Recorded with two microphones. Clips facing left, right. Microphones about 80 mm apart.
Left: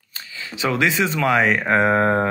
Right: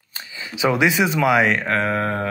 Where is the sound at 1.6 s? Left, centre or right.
Left.